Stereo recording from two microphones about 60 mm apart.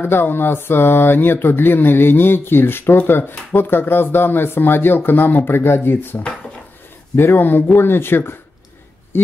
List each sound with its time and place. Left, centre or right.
0.0 s speech: left